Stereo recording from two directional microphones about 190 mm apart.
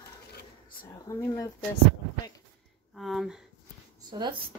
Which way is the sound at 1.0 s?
15° left (ahead or behind).